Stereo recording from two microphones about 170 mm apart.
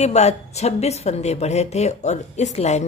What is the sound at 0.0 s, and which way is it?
A woman's voice, 40° left (ahead or behind).